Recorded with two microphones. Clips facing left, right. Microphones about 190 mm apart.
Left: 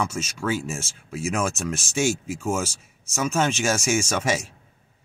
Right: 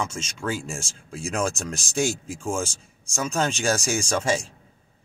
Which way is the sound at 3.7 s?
35° right (ahead or behind).